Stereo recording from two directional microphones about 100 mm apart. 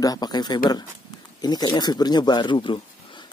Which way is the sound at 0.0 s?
40° left (ahead or behind).